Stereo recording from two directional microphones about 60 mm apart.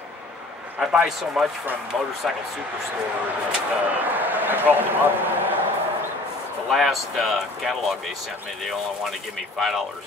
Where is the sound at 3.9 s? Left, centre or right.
Right.